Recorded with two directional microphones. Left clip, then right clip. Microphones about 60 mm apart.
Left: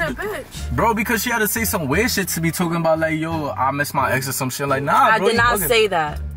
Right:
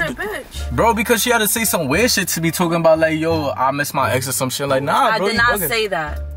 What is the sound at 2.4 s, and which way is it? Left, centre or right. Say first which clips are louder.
Speech: right 6 dB; right.